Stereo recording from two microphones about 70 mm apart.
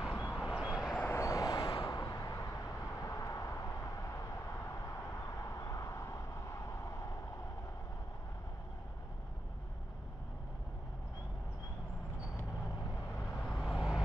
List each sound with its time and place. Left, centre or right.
0.3 s vehicle: centre
1.0 s vehicle: left
5.4 s vehicle: left
13.3 s vehicle: centre